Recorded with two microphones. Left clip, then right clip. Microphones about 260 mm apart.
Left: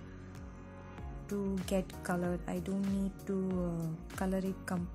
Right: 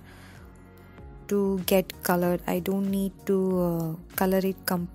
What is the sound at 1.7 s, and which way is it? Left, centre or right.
A woman's voice, right.